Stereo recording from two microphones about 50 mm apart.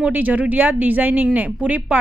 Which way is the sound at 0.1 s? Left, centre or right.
Right.